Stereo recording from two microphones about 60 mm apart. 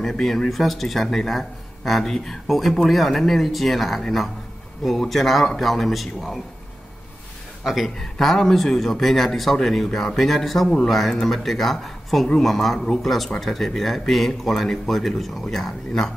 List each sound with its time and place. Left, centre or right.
0.0 s speech: centre
7.6 s speech: centre